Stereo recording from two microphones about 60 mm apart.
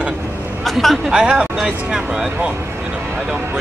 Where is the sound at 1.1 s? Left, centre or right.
Centre.